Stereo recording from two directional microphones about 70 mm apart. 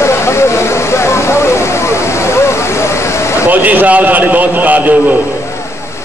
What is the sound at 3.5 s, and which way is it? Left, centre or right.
A man's voice, right.